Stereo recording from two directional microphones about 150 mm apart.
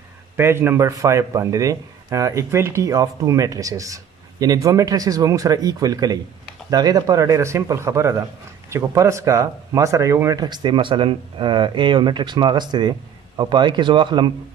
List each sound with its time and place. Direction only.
0.4 s speech: 15° right (ahead or behind); by 14.3 s 30° right (ahead or behind)